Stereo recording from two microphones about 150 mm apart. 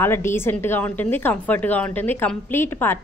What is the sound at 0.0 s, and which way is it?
A woman's voice, 15° left (ahead or behind).